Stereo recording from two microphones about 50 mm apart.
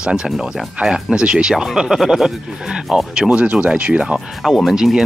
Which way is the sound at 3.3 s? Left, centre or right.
Right.